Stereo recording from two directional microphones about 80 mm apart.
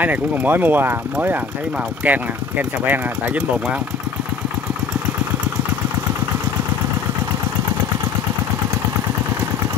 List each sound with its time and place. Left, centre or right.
0.0 s speech: right
2.0 s speech: centre